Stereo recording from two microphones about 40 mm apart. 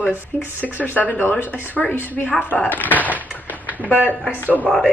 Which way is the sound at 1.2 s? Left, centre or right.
Left.